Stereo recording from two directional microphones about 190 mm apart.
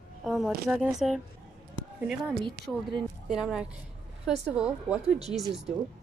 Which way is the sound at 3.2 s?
5° right (ahead or behind).